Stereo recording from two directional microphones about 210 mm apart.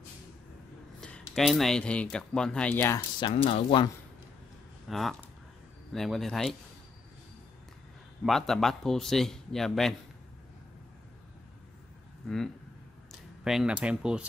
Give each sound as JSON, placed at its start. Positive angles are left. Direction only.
{"t": 1.0, "sound": "speech", "side_deg": 5}
{"t": 3.2, "sound": "speech", "side_deg": 25}
{"t": 4.8, "sound": "speech", "side_deg": 0}
{"t": 8.3, "sound": "speech", "side_deg": 0}
{"t": 13.4, "sound": "speech", "side_deg": 0}